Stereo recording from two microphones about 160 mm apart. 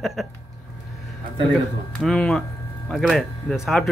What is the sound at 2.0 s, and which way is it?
Speech, 5° left (ahead or behind).